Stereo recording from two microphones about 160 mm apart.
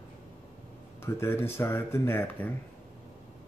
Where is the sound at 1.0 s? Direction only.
15° left (ahead or behind).